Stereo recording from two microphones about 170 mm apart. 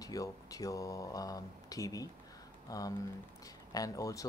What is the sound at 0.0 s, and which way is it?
Speech, 20° left (ahead or behind).